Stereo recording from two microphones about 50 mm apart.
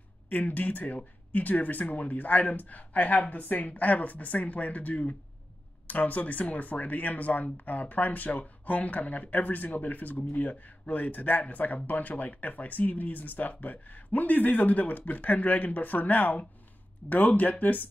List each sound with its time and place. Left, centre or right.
0.3 s speech: left